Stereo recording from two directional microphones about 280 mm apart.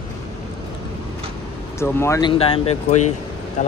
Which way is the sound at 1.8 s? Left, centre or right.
Centre.